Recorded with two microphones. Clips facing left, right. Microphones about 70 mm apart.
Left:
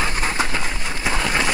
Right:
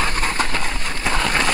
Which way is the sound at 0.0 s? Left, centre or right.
Centre.